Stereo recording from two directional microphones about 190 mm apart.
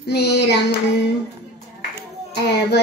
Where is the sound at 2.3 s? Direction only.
60° left (ahead or behind).